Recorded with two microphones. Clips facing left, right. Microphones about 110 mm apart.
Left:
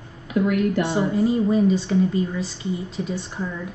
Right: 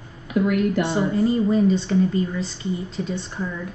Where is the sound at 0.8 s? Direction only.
Centre (ahead or behind).